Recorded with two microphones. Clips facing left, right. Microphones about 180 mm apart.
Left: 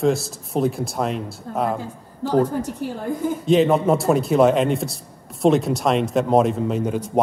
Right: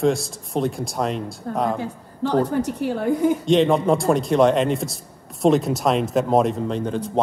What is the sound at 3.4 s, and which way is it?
A man's voice, 5° left (ahead or behind).